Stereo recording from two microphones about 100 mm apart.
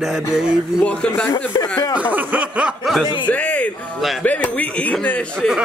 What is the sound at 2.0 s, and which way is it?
Speech, 15° right (ahead or behind).